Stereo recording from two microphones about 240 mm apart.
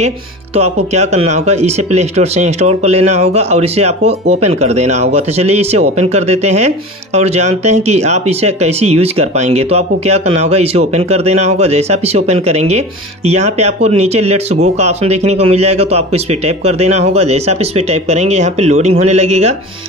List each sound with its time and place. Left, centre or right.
0.6 s speech: right